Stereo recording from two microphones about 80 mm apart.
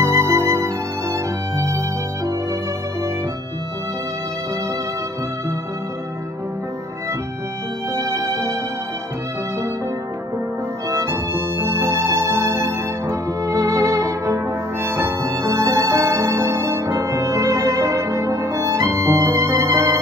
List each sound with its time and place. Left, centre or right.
0.0 s music: right
7.9 s music: right
10.9 s music: right